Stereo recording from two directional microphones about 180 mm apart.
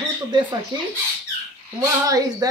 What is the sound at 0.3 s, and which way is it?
Speech, 25° right (ahead or behind).